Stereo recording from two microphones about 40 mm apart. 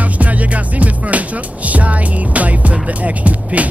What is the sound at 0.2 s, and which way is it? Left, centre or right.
Music, right.